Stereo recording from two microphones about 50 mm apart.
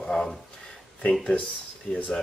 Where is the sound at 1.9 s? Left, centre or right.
Centre.